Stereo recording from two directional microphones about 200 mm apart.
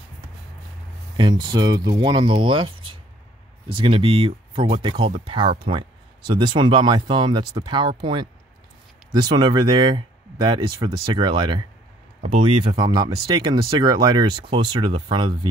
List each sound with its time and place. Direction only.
1.1 s speech: 20° right (ahead or behind)
12.2 s speech: 35° right (ahead or behind)
12.7 s speech: 20° right (ahead or behind)